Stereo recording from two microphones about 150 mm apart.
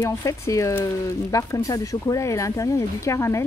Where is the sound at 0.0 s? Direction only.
20° left (ahead or behind).